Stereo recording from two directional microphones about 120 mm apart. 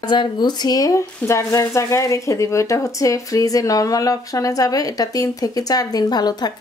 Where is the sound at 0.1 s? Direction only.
40° left (ahead or behind).